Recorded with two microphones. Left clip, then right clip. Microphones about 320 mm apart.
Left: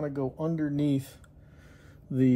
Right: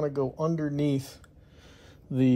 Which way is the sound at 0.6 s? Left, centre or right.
Right.